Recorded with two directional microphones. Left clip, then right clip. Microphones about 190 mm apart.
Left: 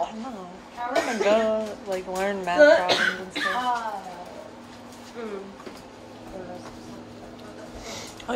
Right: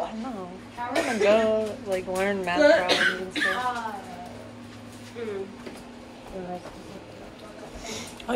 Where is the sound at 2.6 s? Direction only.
55° left (ahead or behind).